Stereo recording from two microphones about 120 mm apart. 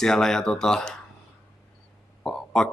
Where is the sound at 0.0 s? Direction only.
5° left (ahead or behind).